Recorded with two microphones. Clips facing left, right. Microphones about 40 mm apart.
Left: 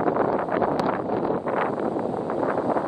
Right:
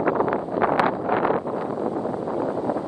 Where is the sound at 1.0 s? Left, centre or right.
Right.